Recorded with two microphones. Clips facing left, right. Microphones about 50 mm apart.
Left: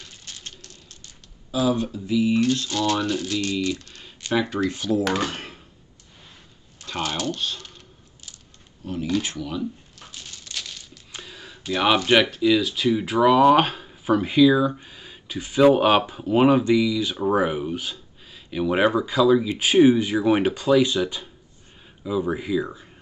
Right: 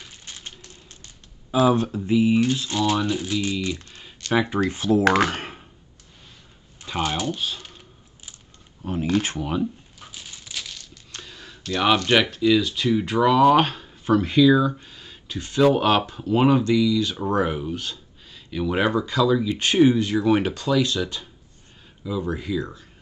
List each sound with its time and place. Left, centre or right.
0.0 s typewriter: centre
1.0 s typing: right
2.3 s speech: centre
4.6 s speech: right
5.0 s speech: right
6.8 s speech: centre
8.8 s speech: right
9.9 s a sound: centre
10.8 s speech: centre